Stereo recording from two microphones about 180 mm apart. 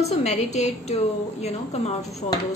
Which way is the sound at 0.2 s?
40° left (ahead or behind).